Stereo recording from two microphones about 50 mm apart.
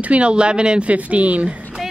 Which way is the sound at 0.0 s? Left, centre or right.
Right.